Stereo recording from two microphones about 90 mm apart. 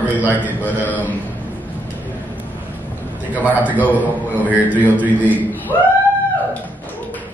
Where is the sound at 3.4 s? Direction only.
15° right (ahead or behind).